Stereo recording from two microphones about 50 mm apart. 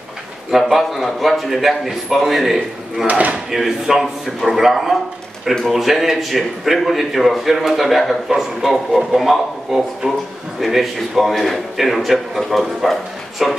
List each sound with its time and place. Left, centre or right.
0.5 s a man's voice: centre
3.1 s speech: right
3.5 s a man's voice: centre